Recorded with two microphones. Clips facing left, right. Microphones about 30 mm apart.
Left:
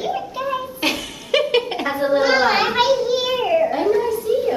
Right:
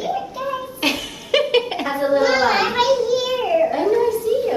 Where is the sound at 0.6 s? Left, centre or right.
Centre.